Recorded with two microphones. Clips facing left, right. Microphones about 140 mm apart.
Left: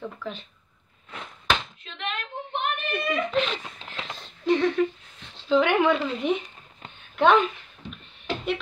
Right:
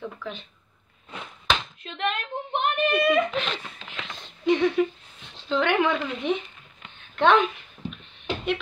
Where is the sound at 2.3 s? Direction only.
55° right (ahead or behind).